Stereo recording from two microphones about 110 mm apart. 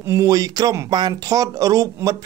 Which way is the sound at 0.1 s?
30° right (ahead or behind).